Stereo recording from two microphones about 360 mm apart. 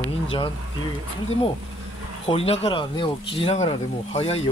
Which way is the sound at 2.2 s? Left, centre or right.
Centre.